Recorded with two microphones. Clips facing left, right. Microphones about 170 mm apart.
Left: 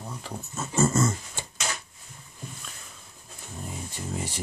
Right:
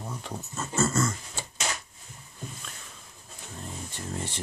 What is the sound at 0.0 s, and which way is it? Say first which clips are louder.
Speech: even; centre (ahead or behind).